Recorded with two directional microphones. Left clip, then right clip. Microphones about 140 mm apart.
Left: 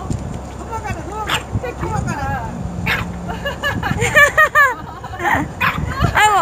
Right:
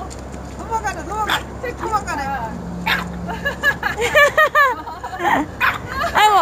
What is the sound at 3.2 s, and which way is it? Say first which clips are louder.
Speech: right 4 dB; 20° right (ahead or behind).